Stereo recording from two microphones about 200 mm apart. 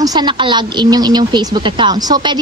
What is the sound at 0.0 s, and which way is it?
Speech, 20° right (ahead or behind).